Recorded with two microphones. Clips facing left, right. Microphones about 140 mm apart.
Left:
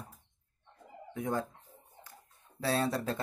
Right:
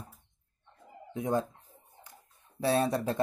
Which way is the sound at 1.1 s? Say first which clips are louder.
Right 4 dB; 20° right (ahead or behind).